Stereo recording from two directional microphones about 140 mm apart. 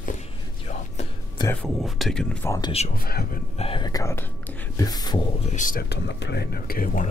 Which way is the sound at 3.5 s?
45° left (ahead or behind).